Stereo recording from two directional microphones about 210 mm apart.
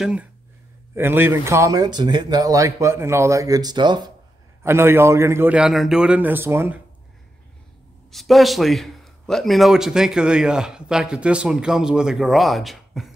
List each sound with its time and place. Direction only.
0.0 s a man's voice: 5° right (ahead or behind)
8.1 s a man's voice: centre (ahead or behind)